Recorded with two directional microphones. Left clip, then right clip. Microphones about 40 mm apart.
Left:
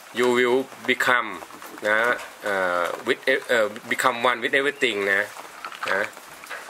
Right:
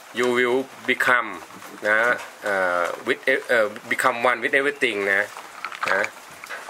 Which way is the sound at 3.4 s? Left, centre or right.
Centre.